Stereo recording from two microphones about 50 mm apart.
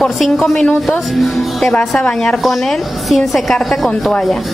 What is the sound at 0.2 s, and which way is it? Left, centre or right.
A woman's voice, centre.